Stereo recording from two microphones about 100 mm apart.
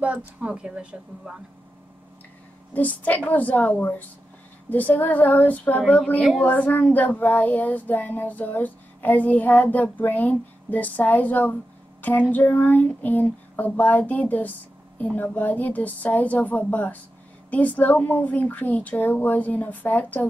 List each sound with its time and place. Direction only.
0.4 s speech: 10° right (ahead or behind)
2.7 s child singing: 15° left (ahead or behind)